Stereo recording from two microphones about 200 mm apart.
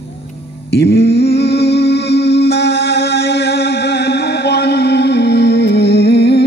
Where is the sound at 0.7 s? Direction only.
55° left (ahead or behind).